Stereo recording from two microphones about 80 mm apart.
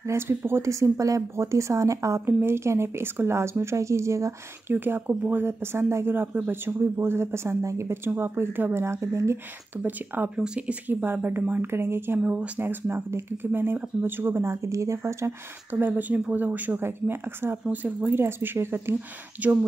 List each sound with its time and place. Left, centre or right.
0.4 s speech: right
4.7 s speech: right
9.8 s speech: right
10.3 s speech: centre
10.9 s speech: right
12.2 s speech: centre
12.5 s speech: right
15.7 s speech: right
18.9 s speech: centre